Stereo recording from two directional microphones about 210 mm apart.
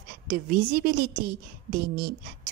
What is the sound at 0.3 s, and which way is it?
A woman's voice, 40° right (ahead or behind).